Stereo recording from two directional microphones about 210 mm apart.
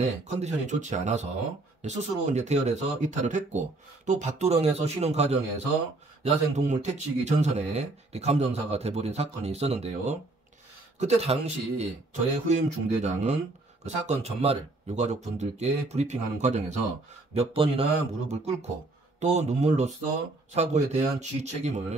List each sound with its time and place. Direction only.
0.0 s speech: 30° right (ahead or behind)